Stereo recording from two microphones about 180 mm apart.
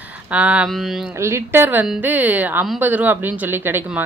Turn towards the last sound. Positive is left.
turn(degrees=-10)  # may be behind; listen again after turning